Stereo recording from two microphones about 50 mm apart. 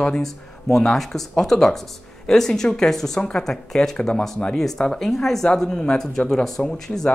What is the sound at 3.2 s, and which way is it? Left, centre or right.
Speech, centre.